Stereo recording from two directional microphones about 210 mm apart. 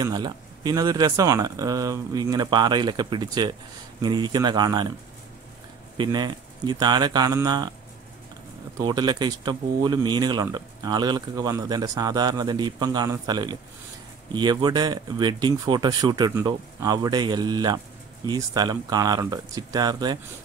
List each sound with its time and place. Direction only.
0.0 s speech: 20° right (ahead or behind)
5.9 s speech: 20° right (ahead or behind)
8.7 s speech: 20° right (ahead or behind)